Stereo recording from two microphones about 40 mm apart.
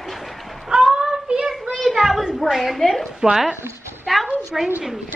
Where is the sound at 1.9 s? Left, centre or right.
Centre.